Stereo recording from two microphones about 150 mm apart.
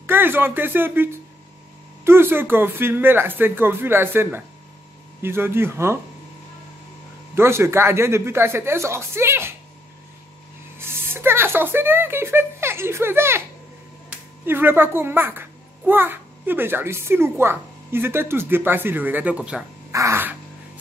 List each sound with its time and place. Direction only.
0.0 s a child's voice: 15° right (ahead or behind)
7.3 s a child's voice: 15° right (ahead or behind)
10.8 s speech: 15° right (ahead or behind)
14.4 s a child's voice: 15° right (ahead or behind)
19.9 s crow: 20° right (ahead or behind)